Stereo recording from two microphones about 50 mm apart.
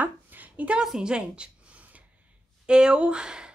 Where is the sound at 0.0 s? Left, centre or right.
Right.